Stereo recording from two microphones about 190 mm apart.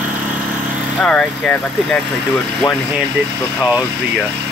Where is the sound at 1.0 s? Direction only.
5° left (ahead or behind).